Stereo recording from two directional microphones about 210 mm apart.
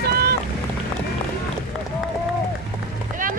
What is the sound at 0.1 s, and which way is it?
Boat, 50° right (ahead or behind).